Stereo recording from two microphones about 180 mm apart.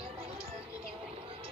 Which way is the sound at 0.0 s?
30° right (ahead or behind).